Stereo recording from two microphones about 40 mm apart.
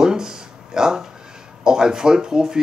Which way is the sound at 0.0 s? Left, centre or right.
Centre.